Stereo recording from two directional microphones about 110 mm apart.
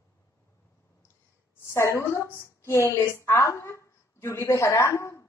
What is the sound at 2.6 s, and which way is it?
A woman's voice, 20° left (ahead or behind).